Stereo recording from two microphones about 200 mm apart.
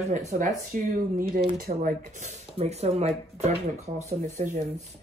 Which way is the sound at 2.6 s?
30° right (ahead or behind).